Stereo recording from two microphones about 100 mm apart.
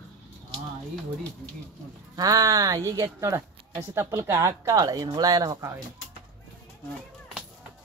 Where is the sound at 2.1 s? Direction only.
40° right (ahead or behind).